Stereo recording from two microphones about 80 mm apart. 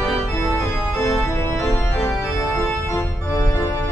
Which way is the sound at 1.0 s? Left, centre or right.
Left.